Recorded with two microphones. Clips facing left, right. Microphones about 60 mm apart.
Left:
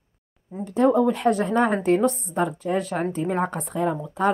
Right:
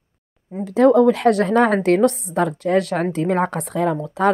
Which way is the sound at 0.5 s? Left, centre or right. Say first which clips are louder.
Right 6 dB; right.